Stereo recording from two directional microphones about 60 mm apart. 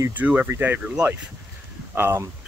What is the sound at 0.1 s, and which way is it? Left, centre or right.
Speech, right.